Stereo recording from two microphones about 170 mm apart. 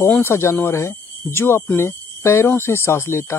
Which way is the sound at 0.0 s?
15° left (ahead or behind).